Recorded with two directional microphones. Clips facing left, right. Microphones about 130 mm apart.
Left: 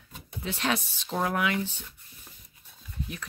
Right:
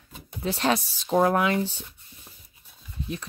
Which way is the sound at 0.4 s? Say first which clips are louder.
Right 5 dB; 35° right (ahead or behind).